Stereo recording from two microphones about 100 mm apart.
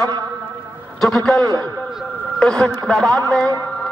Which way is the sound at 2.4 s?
5° left (ahead or behind).